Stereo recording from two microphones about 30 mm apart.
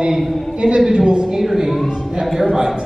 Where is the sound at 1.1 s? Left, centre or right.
Right.